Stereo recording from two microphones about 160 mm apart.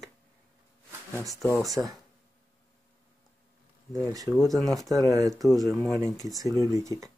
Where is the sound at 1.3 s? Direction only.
20° left (ahead or behind).